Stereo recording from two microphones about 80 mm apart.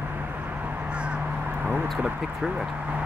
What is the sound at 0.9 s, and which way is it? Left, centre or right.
Crow, centre.